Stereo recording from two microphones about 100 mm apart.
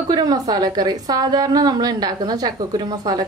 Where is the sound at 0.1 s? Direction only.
40° right (ahead or behind).